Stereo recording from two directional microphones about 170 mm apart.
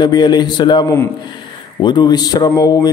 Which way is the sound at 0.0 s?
25° left (ahead or behind).